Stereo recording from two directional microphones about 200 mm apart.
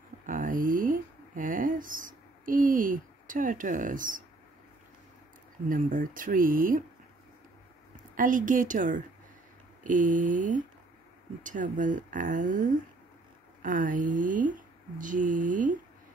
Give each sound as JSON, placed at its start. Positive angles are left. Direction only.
{"t": 0.3, "sound": "speech", "side_deg": -45}
{"t": 5.7, "sound": "speech", "side_deg": -40}
{"t": 7.9, "sound": "a woman's voice", "side_deg": -40}